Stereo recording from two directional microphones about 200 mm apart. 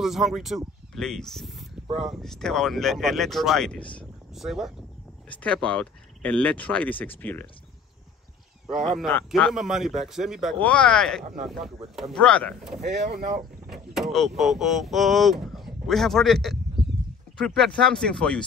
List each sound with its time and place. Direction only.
0.0 s speech: centre (ahead or behind)
8.7 s speech: centre (ahead or behind)
13.1 s speech: 45° right (ahead or behind)
13.7 s speech: centre (ahead or behind)